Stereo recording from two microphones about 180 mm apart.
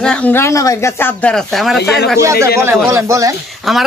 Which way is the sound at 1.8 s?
65° left (ahead or behind).